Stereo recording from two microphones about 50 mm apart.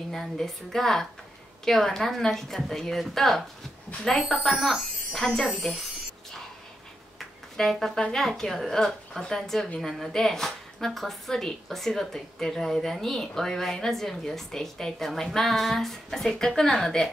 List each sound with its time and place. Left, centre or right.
0.1 s a woman's voice: centre
7.2 s a sound: centre
8.2 s a woman's voice: centre